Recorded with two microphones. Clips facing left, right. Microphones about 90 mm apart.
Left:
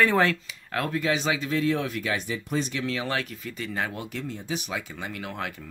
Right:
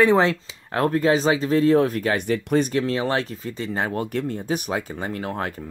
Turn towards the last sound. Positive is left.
turn(degrees=-40)  # may be behind; listen again after turning